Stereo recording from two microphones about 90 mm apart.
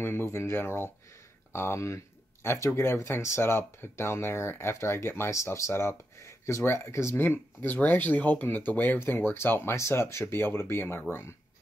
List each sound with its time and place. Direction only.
0.0 s speech: 25° left (ahead or behind)